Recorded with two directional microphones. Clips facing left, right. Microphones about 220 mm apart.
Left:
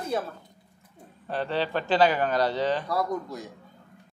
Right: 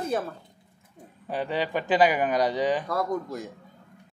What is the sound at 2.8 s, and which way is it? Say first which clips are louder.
Speech: even; 50° right (ahead or behind).